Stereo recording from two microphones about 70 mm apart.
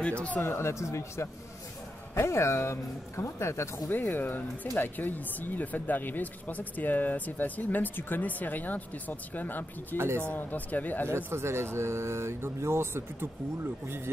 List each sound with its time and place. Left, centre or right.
0.0 s speech: centre
0.4 s speech: left
3.9 s speech: left
9.9 s speech: right
10.2 s speech: left
11.2 s speech: right